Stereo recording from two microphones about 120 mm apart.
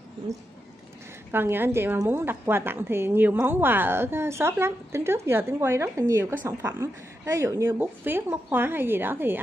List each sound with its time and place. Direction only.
1.3 s a woman's voice: 20° right (ahead or behind)